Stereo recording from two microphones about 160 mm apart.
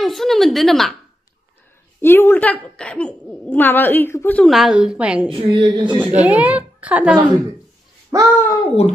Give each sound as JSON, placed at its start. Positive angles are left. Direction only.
{"t": 0.0, "sound": "a woman's voice", "side_deg": 0}
{"t": 2.0, "sound": "speech", "side_deg": 15}
{"t": 4.5, "sound": "a woman's voice", "side_deg": 0}
{"t": 5.4, "sound": "speech", "side_deg": -35}
{"t": 5.9, "sound": "a woman's voice", "side_deg": -10}
{"t": 8.4, "sound": "speech", "side_deg": 15}